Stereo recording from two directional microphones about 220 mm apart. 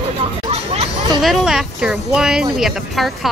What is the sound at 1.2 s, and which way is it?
Speech, centre (ahead or behind).